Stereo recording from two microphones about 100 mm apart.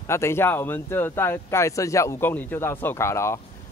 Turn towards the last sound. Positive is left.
turn(degrees=30)  # may be behind; listen again after turning